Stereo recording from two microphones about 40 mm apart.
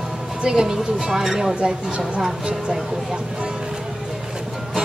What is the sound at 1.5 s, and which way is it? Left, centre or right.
Speech, right.